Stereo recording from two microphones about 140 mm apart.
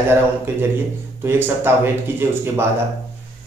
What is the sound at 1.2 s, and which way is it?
Speech, 15° right (ahead or behind).